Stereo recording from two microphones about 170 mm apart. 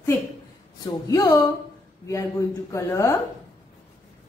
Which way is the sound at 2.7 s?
15° left (ahead or behind).